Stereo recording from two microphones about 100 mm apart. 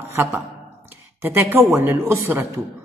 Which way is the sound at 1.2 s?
25° right (ahead or behind).